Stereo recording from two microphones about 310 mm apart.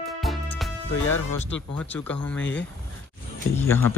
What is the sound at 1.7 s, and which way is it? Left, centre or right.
Speech, centre.